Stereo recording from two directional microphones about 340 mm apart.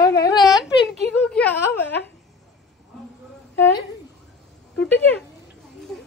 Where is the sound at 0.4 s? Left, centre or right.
Centre.